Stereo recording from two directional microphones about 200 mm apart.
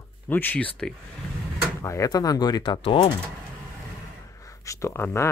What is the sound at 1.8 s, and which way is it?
Speech, 15° left (ahead or behind).